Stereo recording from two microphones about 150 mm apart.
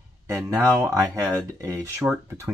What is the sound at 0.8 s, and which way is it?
Speech, 20° right (ahead or behind).